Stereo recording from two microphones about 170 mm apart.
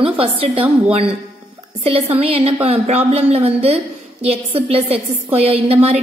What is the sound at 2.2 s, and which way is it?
A woman's voice, 35° right (ahead or behind).